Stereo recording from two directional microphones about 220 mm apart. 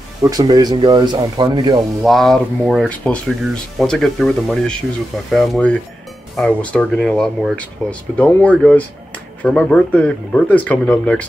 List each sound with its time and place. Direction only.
0.2 s speech: 15° right (ahead or behind)
2.0 s speech: centre (ahead or behind)